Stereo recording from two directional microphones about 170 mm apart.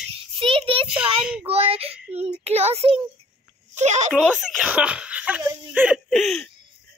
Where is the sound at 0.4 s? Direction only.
30° right (ahead or behind).